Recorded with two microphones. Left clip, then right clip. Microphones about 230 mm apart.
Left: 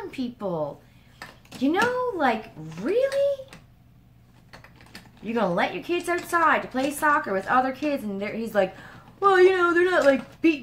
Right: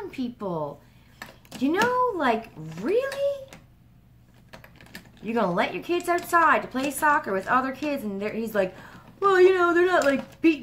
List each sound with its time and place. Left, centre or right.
0.0 s a woman's voice: centre
4.5 s typing: right
5.2 s a woman's voice: centre